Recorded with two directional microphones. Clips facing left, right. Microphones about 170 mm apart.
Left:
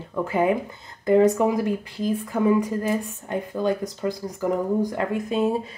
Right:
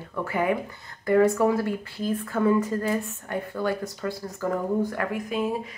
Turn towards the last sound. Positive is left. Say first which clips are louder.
# left 4 dB
turn(degrees=30)  # may be behind; listen again after turning